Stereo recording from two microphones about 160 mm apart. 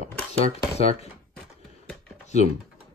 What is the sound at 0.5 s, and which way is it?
Speech, 40° left (ahead or behind).